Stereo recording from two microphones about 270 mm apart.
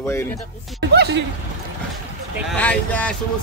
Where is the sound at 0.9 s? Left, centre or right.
Right.